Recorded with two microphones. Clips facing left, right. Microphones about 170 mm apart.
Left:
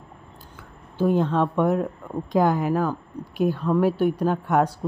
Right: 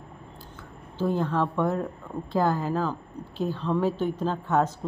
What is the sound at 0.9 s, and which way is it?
A woman's voice, 15° left (ahead or behind).